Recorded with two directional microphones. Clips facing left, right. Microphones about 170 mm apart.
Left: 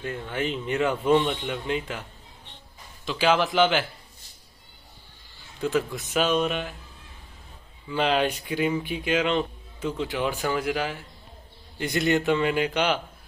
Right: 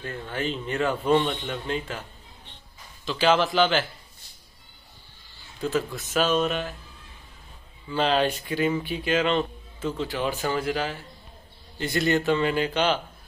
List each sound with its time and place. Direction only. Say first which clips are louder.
0.0 s speech: left 1 dB; 20° left (ahead or behind)
3.1 s speech: right 1 dB; 10° left (ahead or behind)
5.6 s speech: left 1 dB; 15° left (ahead or behind)
7.9 s speech: right 1 dB; 10° left (ahead or behind)